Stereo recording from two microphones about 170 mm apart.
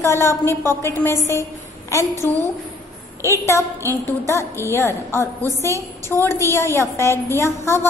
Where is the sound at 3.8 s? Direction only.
15° left (ahead or behind).